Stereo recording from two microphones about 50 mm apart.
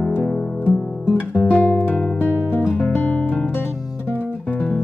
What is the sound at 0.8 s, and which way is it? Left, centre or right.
Guitar, centre.